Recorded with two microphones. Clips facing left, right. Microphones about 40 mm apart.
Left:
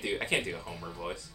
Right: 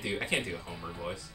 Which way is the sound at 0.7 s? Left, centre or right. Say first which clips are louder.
Even; centre.